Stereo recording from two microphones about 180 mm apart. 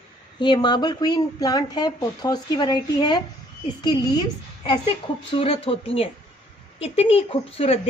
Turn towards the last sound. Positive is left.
turn(degrees=30)  # may be behind; listen again after turning